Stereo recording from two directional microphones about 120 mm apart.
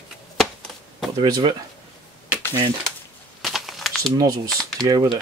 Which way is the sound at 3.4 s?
Centre (ahead or behind).